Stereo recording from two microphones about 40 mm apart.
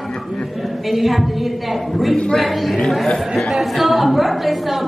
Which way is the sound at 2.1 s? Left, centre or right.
Centre.